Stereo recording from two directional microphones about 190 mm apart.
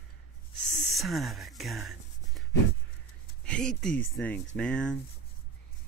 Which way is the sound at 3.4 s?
5° left (ahead or behind).